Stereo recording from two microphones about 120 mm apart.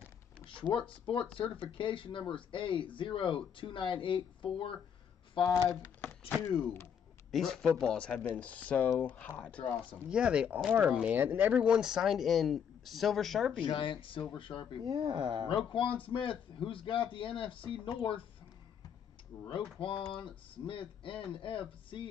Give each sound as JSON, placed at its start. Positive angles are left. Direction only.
{"t": 0.5, "sound": "speech", "side_deg": 45}
{"t": 5.4, "sound": "speech", "side_deg": 25}
{"t": 5.9, "sound": "a sound", "side_deg": 15}
{"t": 6.5, "sound": "speech", "side_deg": 20}
{"t": 7.2, "sound": "speech", "side_deg": 0}
{"t": 9.6, "sound": "speech", "side_deg": 55}
{"t": 10.0, "sound": "speech", "side_deg": -10}
{"t": 13.7, "sound": "speech", "side_deg": 45}
{"t": 14.8, "sound": "speech", "side_deg": -40}
{"t": 15.5, "sound": "speech", "side_deg": 45}
{"t": 19.4, "sound": "speech", "side_deg": 45}